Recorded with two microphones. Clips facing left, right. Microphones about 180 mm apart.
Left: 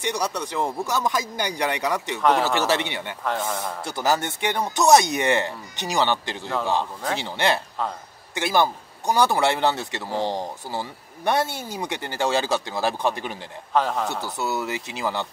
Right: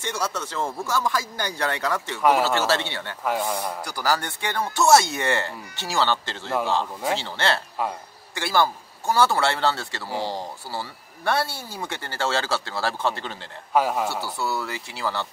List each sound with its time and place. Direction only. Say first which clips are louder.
0.0 s speech: left 2 dB; 15° left (ahead or behind)
3.3 s a man's voice: right 1 dB; centre (ahead or behind)
3.8 s speech: left 4 dB; 25° left (ahead or behind)
13.7 s a man's voice: right 1 dB; 10° right (ahead or behind)
14.2 s speech: left 1 dB; 20° left (ahead or behind)